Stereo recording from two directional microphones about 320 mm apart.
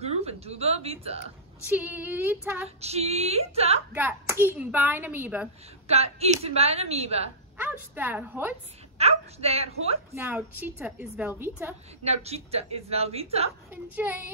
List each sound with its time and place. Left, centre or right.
0.0 s a woman's voice: centre
1.7 s speech: centre
2.8 s a woman's voice: centre
3.9 s speech: centre
6.1 s a woman's voice: centre
7.5 s speech: centre
8.9 s a woman's voice: centre
10.1 s speech: centre
12.0 s a woman's voice: centre